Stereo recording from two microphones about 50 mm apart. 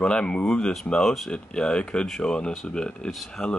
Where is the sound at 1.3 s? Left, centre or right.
Centre.